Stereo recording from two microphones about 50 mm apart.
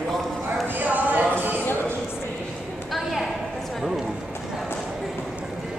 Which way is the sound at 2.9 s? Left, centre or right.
Centre.